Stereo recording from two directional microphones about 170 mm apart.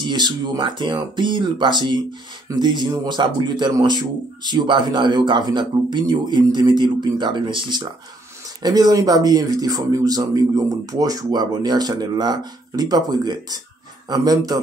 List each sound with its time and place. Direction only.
0.0 s speech: 25° right (ahead or behind)